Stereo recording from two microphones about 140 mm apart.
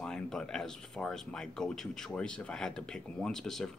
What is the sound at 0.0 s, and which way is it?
Speech, 5° left (ahead or behind).